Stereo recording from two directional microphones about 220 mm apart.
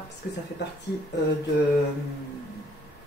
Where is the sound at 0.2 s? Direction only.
45° left (ahead or behind).